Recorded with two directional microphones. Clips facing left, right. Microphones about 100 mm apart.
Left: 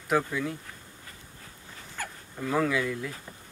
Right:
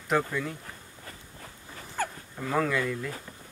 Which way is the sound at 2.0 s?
35° right (ahead or behind).